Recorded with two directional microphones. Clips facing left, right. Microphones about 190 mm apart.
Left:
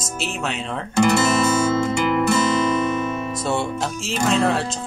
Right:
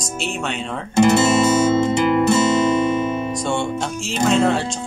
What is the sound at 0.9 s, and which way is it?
Music, 25° right (ahead or behind).